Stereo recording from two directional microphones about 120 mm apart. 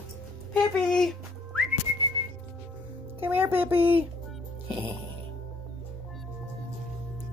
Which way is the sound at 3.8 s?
50° right (ahead or behind).